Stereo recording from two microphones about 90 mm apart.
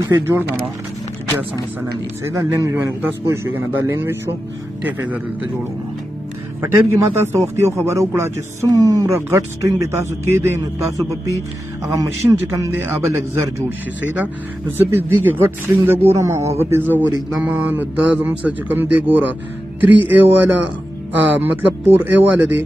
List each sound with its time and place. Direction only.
0.2 s speech: 25° right (ahead or behind)
2.2 s speech: 30° right (ahead or behind)
4.8 s speech: 20° right (ahead or behind)
6.6 s speech: 30° right (ahead or behind)
12.0 s speech: 40° right (ahead or behind)
13.7 s speech: 20° right (ahead or behind)
17.4 s mantra: 20° right (ahead or behind)
18.4 s speech: 20° right (ahead or behind)